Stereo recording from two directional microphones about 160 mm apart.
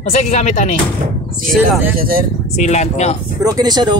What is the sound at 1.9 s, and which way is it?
Speech, 65° right (ahead or behind).